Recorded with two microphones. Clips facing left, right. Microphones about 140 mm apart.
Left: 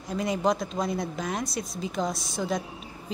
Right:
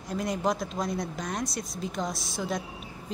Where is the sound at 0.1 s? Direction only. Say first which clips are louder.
Left 3 dB; centre (ahead or behind).